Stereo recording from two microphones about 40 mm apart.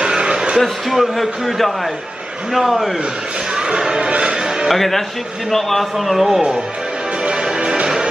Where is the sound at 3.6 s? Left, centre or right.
Centre.